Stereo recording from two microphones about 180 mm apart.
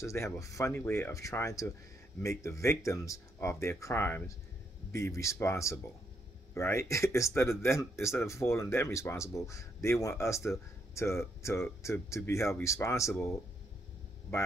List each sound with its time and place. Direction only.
0.0 s speech: 15° left (ahead or behind)